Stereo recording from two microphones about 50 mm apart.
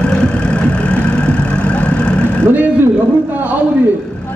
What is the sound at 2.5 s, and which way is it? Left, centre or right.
Speech, right.